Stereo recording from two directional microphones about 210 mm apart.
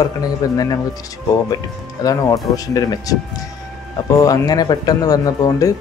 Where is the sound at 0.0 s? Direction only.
15° left (ahead or behind).